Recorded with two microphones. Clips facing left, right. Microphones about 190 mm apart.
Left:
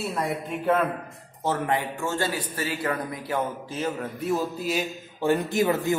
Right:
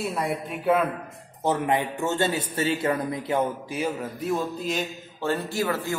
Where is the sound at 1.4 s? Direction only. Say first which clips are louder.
Right 2 dB; 20° right (ahead or behind).